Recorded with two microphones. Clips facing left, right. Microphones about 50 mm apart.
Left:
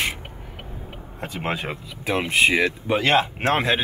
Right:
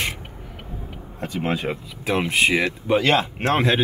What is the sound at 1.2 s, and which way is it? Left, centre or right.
Speech, left.